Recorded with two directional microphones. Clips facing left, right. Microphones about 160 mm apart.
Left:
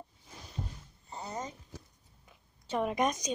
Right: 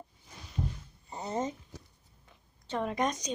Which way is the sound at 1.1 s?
25° right (ahead or behind).